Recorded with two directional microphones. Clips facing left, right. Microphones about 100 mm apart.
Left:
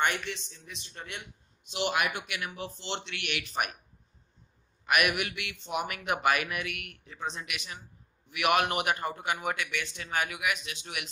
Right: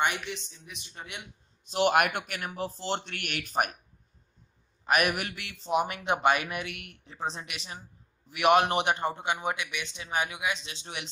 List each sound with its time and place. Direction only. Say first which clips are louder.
0.0 s speech: even; 15° right (ahead or behind)
1.6 s a man's voice: right 6 dB; 45° right (ahead or behind)
4.8 s a man's voice: right 1 dB; 35° right (ahead or behind)